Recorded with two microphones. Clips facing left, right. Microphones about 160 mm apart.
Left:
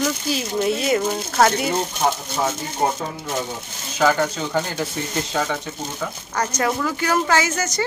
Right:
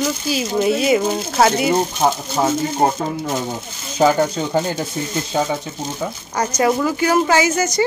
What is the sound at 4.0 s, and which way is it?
Speech, 20° right (ahead or behind).